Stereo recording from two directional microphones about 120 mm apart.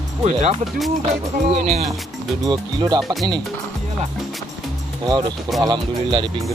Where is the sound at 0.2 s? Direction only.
65° right (ahead or behind).